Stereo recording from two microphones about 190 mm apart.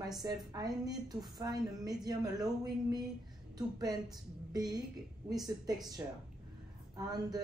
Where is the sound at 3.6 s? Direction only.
20° right (ahead or behind).